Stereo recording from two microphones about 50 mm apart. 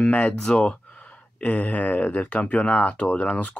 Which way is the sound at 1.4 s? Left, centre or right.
Left.